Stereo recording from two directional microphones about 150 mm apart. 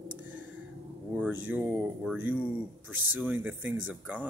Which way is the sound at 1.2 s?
10° right (ahead or behind).